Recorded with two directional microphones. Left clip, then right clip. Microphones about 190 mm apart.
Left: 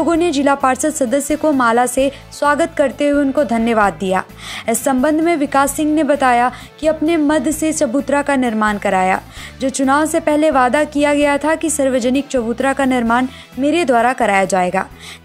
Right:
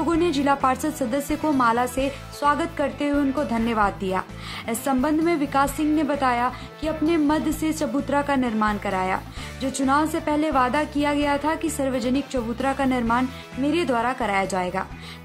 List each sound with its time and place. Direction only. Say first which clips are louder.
0.0 s a woman's voice: left 7 dB; 30° left (ahead or behind)